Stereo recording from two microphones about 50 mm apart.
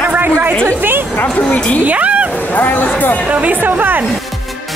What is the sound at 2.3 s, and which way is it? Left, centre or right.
Speech, left.